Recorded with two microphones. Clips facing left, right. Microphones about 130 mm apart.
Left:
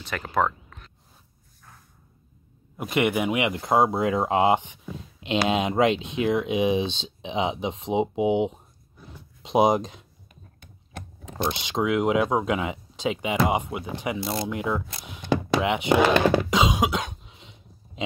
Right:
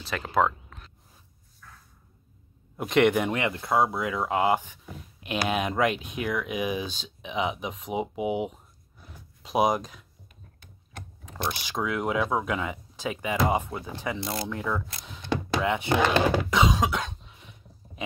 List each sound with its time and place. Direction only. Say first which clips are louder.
0.0 s a sound: even; centre (ahead or behind)
2.8 s speech: right 2 dB; 5° left (ahead or behind); by 10.0 s 25° left (ahead or behind)
11.2 s speech: left 4 dB; 20° left (ahead or behind)
16.4 s cough: left 1 dB; 20° left (ahead or behind)